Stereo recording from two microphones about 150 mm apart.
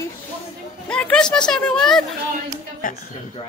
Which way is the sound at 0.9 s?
5° left (ahead or behind).